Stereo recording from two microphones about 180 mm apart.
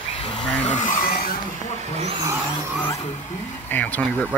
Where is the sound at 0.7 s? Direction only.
45° left (ahead or behind).